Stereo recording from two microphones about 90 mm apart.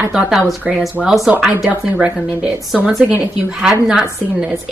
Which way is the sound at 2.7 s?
10° right (ahead or behind).